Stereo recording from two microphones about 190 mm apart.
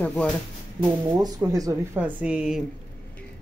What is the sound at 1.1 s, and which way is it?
Speech, 20° right (ahead or behind).